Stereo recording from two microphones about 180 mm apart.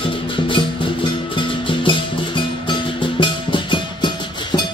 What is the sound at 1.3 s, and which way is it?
Music, 25° left (ahead or behind).